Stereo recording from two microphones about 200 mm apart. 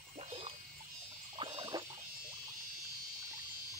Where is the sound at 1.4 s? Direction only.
25° right (ahead or behind).